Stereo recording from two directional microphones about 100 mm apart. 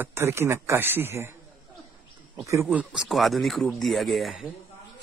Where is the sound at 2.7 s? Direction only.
10° right (ahead or behind).